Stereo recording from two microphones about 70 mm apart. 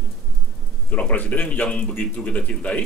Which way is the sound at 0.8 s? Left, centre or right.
Left.